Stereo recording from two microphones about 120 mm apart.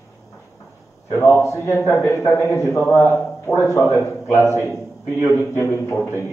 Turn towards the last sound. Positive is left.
turn(degrees=20)  # may be behind; listen again after turning